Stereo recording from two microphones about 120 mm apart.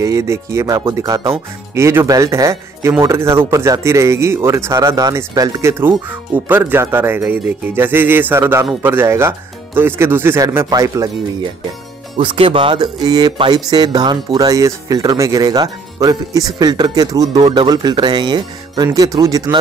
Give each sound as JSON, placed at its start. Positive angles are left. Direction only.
{"t": 0.0, "sound": "speech", "side_deg": -25}
{"t": 12.2, "sound": "speech", "side_deg": -45}
{"t": 12.8, "sound": "speech", "side_deg": -35}